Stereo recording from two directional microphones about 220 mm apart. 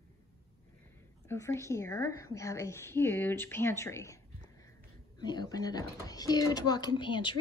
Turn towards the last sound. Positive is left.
turn(degrees=20)  # may be behind; listen again after turning